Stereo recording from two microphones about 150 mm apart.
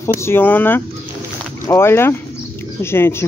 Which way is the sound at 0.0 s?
15° left (ahead or behind).